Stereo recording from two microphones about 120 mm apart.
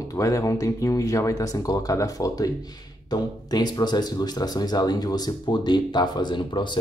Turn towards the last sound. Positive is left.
turn(degrees=40)  # may be behind; listen again after turning